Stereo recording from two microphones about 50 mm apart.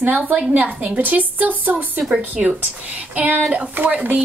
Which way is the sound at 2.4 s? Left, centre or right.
Centre.